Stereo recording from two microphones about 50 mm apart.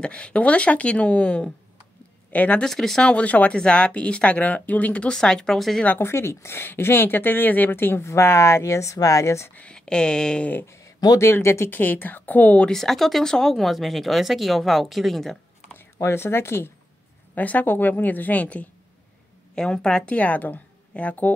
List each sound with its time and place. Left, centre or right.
0.0 s a woman's voice: left
2.6 s speech: centre
3.0 s speech: left
5.1 s speech: centre
5.9 s speech: left
8.0 s speech: left
9.6 s speech: centre
10.6 s speech: left
11.7 s a woman's voice: left
12.7 s speech: centre
16.0 s speech: left
17.4 s a woman's voice: left
19.5 s speech: centre
20.2 s a woman's voice: left